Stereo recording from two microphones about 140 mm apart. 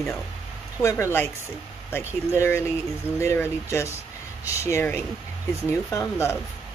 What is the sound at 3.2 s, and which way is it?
Speech, 20° left (ahead or behind).